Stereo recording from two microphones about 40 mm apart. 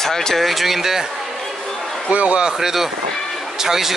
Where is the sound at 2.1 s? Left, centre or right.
Right.